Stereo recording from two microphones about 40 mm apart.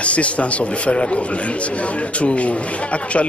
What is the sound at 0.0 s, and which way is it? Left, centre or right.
A man's voice, left.